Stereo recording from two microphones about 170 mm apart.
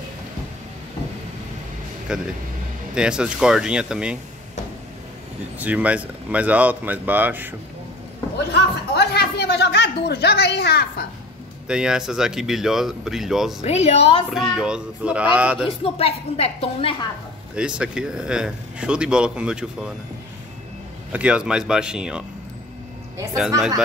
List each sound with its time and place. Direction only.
2.1 s a man's voice: 5° right (ahead or behind)
5.6 s speech: 10° right (ahead or behind)
8.5 s speech: 75° left (ahead or behind)
11.6 s a man's voice: 5° right (ahead or behind)
13.6 s a woman's voice: 40° left (ahead or behind)
14.3 s a man's voice: centre (ahead or behind)
15.8 s a woman's voice: 35° left (ahead or behind)
17.6 s a man's voice: 5° right (ahead or behind)
21.1 s a man's voice: 5° right (ahead or behind)